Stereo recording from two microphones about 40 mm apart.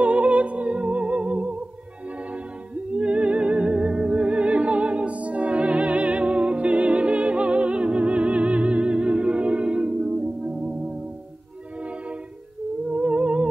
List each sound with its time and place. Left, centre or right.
0.0 s music: right
2.9 s music: right
12.9 s music: right